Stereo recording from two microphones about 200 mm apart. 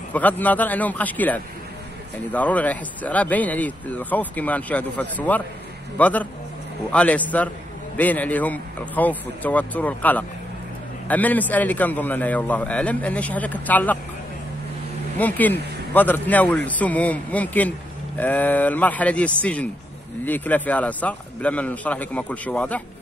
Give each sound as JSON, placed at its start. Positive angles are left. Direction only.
{"t": 0.1, "sound": "a man's voice", "side_deg": 10}
{"t": 15.1, "sound": "a man's voice", "side_deg": 10}